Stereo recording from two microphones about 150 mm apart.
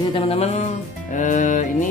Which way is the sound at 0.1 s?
40° left (ahead or behind).